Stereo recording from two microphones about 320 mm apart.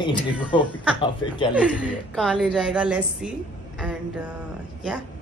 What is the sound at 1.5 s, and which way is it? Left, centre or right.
A woman's voice, centre.